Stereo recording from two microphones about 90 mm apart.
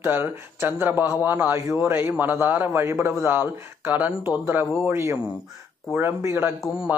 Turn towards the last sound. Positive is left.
turn(degrees=-5)  # may be behind; listen again after turning